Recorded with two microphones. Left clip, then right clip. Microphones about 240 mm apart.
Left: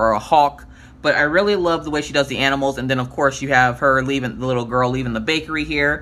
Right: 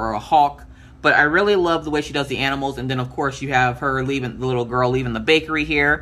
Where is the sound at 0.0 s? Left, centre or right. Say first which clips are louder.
Left 2 dB; centre.